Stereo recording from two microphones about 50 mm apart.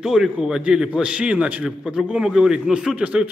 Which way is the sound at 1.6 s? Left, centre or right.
Centre.